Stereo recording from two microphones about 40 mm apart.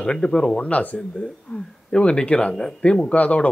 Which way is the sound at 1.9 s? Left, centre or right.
Left.